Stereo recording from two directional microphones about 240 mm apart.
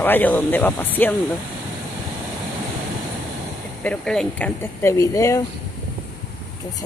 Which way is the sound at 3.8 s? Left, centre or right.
Centre.